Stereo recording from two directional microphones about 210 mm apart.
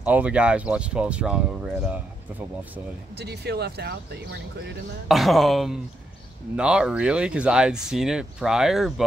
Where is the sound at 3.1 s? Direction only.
50° right (ahead or behind).